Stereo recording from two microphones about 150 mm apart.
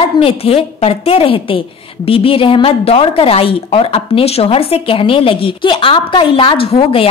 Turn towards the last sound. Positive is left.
turn(degrees=40)  # may be behind; listen again after turning